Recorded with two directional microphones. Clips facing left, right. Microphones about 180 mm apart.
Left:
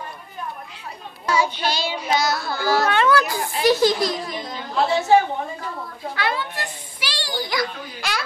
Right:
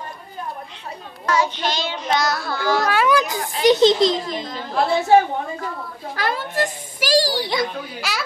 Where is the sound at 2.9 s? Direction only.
10° right (ahead or behind).